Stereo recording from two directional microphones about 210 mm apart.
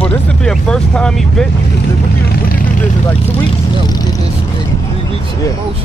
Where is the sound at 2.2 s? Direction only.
45° left (ahead or behind).